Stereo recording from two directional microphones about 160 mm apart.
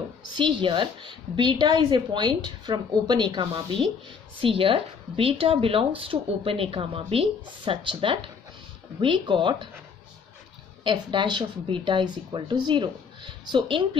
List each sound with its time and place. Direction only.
0.4 s a woman's voice: 30° right (ahead or behind)
10.8 s a woman's voice: 30° right (ahead or behind)